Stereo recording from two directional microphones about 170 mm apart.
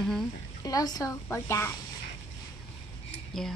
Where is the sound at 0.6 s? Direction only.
20° left (ahead or behind).